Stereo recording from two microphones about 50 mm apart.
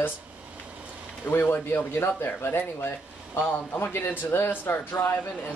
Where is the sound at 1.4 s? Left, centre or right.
Left.